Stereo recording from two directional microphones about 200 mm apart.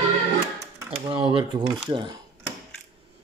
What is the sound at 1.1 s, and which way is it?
Speech, 25° right (ahead or behind).